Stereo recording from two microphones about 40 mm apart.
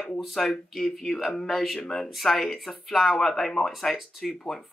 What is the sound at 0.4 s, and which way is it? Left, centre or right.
Speech, centre.